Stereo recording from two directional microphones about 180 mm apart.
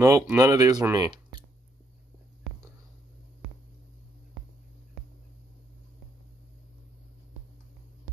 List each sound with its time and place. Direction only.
0.0 s speech: 15° right (ahead or behind)